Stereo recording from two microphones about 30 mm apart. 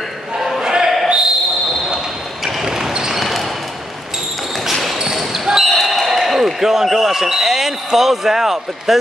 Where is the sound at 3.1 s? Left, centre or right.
Centre.